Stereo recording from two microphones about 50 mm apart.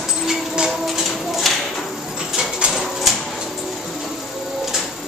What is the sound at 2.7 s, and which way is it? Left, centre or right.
Bird, centre.